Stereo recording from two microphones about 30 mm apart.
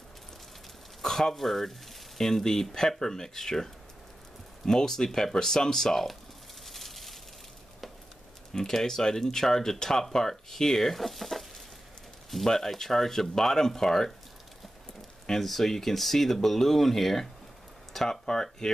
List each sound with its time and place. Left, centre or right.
1.0 s frying: centre
1.4 s speech: centre
6.6 s a sound: centre
8.5 s speech: centre
11.0 s speech: centre
12.4 s speech: centre
15.4 s speech: centre
18.2 s speech: left